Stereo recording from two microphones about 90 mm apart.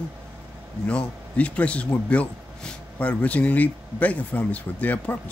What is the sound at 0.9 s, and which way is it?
Speech, 15° left (ahead or behind).